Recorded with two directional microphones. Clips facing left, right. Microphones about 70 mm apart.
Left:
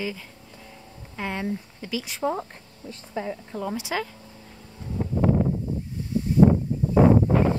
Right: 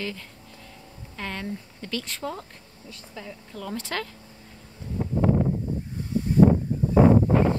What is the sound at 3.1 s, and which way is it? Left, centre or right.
Speech, left.